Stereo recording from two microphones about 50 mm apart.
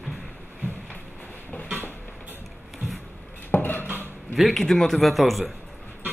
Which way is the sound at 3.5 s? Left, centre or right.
Left.